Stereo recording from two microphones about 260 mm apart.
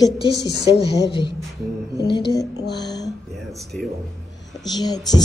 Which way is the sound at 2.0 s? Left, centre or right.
Centre.